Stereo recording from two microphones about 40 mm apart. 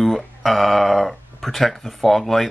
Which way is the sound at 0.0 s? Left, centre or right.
Centre.